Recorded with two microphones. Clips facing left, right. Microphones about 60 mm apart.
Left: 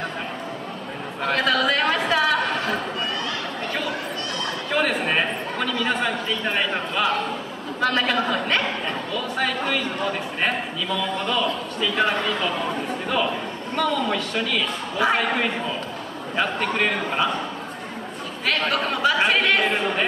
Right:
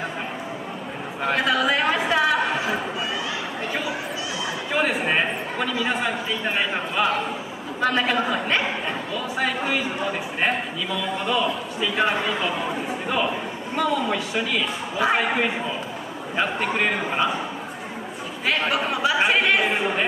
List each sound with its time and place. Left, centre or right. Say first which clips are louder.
1.2 s a sound: even; centre
4.7 s a man's voice: even; centre
18.4 s a man's voice: even; centre